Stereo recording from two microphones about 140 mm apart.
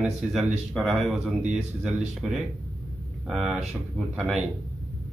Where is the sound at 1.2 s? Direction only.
45° right (ahead or behind).